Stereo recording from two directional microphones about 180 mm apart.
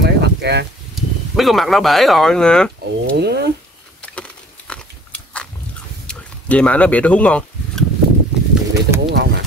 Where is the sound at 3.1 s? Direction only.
65° right (ahead or behind).